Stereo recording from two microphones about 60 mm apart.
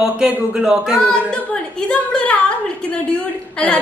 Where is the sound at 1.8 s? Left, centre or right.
Left.